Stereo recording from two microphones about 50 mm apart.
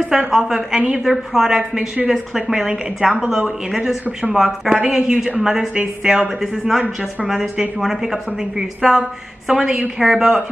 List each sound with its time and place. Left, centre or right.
0.1 s a woman's voice: centre
7.2 s a woman's voice: centre